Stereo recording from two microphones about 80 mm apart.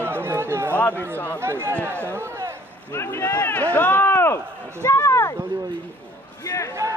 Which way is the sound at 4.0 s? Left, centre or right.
Left.